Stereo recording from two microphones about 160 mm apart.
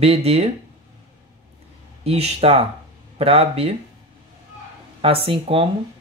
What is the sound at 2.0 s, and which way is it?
Speech, 40° right (ahead or behind).